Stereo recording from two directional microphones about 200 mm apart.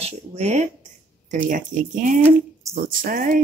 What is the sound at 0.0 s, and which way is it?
Speech, 35° right (ahead or behind).